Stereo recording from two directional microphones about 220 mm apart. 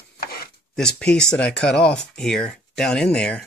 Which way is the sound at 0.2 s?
45° left (ahead or behind).